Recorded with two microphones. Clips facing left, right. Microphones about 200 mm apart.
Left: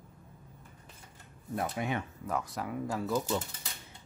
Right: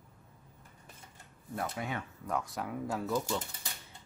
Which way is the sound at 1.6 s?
20° left (ahead or behind).